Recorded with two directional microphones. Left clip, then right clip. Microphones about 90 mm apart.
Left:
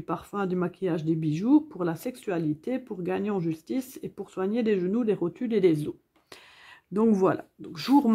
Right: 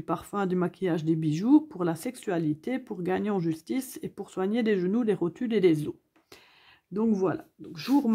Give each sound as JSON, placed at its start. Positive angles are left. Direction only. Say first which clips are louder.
{"t": 0.0, "sound": "speech", "louder": "right 1 dB", "side_deg": -25}
{"t": 6.9, "sound": "speech", "louder": "left 4 dB", "side_deg": 40}